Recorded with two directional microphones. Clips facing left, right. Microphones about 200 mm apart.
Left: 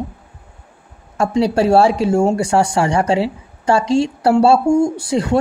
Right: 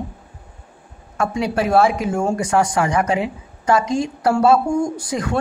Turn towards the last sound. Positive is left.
turn(degrees=30)  # may be behind; listen again after turning